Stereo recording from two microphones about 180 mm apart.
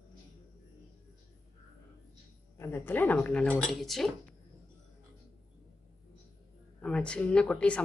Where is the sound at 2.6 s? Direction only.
15° left (ahead or behind).